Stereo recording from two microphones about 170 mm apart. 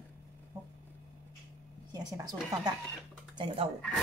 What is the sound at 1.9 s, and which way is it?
Speech, 25° right (ahead or behind).